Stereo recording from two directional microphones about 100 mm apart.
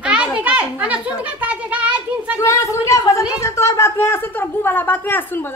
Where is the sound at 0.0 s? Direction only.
10° right (ahead or behind).